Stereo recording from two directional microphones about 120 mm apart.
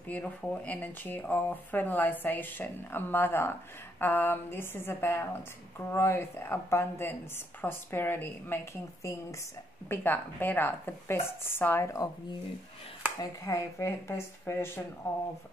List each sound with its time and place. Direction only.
0.1 s speech: 10° left (ahead or behind)
13.2 s speech: 25° left (ahead or behind)